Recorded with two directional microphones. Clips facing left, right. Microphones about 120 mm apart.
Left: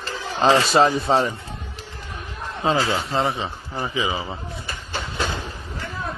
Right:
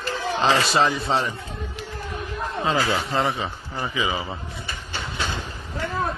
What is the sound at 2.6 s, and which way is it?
Speech, 30° left (ahead or behind).